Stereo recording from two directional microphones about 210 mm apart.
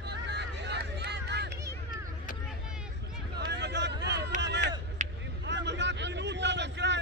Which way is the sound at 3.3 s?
55° right (ahead or behind).